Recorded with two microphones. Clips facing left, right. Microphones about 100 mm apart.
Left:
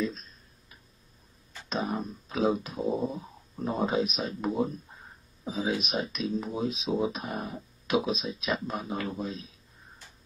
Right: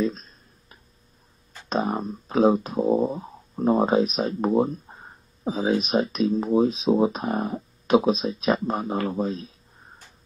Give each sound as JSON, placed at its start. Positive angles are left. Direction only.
{"t": 0.0, "sound": "speech", "side_deg": -40}
{"t": 1.5, "sound": "speech", "side_deg": -40}
{"t": 3.2, "sound": "speech", "side_deg": -45}